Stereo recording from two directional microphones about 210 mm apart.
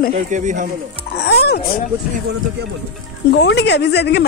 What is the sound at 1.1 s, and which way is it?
Speech, 50° left (ahead or behind).